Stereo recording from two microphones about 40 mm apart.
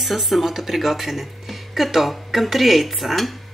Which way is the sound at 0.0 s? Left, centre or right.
Centre.